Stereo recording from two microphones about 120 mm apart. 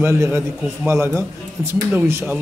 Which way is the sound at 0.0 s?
20° right (ahead or behind).